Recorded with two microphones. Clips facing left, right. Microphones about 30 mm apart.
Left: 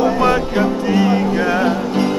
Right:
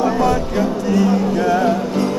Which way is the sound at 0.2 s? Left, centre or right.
Left.